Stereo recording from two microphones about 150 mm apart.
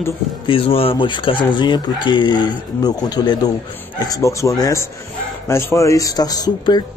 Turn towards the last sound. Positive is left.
turn(degrees=30)  # may be behind; listen again after turning